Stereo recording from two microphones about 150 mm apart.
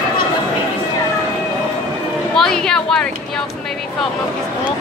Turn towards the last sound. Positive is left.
turn(degrees=5)  # may be behind; listen again after turning